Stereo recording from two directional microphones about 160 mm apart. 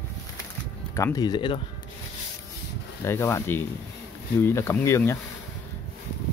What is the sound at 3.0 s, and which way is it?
Speech, 15° left (ahead or behind).